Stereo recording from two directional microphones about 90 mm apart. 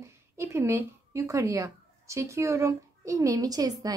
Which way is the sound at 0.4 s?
30° right (ahead or behind).